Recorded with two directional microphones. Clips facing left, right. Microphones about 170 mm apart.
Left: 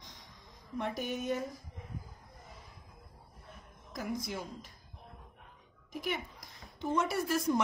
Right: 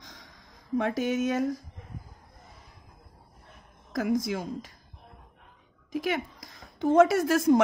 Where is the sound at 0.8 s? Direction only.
90° right.